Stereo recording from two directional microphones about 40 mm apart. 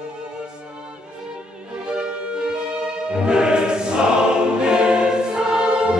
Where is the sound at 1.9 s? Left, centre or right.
Right.